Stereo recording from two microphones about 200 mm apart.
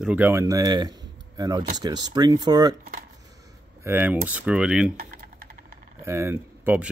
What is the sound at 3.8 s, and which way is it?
Speech, 10° right (ahead or behind).